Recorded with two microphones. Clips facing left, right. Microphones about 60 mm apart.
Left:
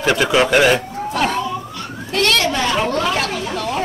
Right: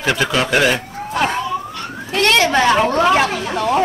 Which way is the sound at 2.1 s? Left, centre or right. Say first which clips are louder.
Right 2 dB; right.